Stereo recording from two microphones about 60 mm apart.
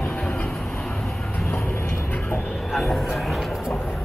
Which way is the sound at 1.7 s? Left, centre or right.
Left.